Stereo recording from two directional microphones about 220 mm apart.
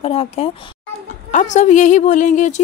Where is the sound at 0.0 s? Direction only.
25° left (ahead or behind).